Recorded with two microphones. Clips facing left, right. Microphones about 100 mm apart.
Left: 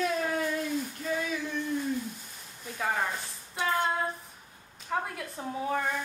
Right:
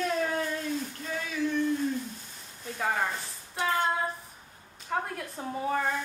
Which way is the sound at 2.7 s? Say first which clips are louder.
Right 1 dB; centre (ahead or behind).